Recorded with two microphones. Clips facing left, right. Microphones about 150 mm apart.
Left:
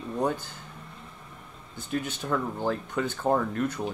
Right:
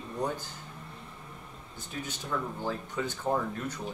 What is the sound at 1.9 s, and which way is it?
Speech, 60° left (ahead or behind).